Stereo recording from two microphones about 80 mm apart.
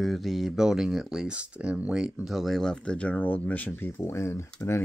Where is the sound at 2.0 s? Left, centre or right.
Centre.